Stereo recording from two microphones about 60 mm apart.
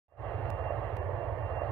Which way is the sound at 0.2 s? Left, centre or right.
Centre.